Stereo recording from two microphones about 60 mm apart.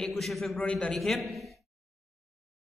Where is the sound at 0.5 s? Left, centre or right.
Centre.